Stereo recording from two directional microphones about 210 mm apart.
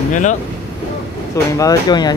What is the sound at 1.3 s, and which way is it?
Speech, 15° left (ahead or behind).